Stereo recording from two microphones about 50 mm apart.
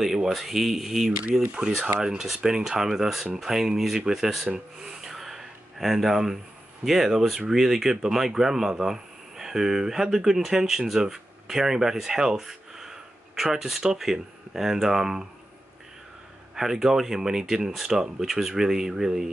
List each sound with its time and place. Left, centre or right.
0.0 s speech: centre
1.5 s speech: centre
4.8 s a sound: centre
6.8 s speech: centre
16.5 s speech: centre